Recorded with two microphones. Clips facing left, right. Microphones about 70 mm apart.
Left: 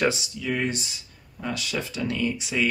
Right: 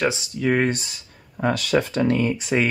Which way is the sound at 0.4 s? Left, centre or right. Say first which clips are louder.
Right 11 dB; right.